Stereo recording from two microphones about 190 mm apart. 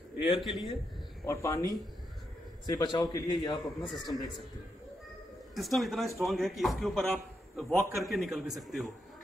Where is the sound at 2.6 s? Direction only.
20° left (ahead or behind).